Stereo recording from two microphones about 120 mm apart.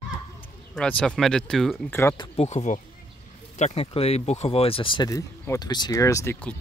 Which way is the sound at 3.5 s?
60° left (ahead or behind).